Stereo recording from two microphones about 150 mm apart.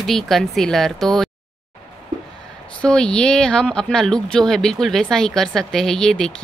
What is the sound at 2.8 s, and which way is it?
A woman's voice, 5° left (ahead or behind).